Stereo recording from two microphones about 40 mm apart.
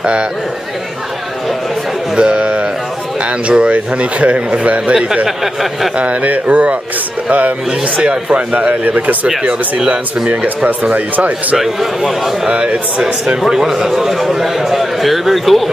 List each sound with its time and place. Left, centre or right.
0.0 s speech: right
2.1 s a sound: right
3.2 s speech: right
5.4 s a man's voice: centre
5.9 s speech: right
9.4 s speech: right
10.4 s speech: right
11.5 s a man's voice: centre
12.4 s a man's voice: right; by 15.7 s centre